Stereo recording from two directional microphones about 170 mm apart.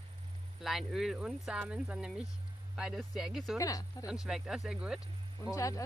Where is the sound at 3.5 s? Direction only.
20° left (ahead or behind).